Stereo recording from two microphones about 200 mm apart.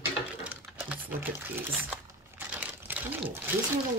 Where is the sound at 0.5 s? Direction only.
10° right (ahead or behind).